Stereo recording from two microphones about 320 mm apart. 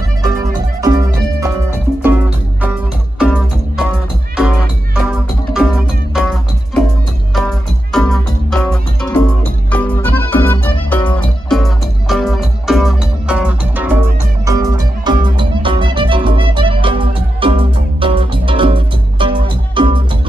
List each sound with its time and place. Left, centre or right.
0.2 s music: centre
7.3 s music: centre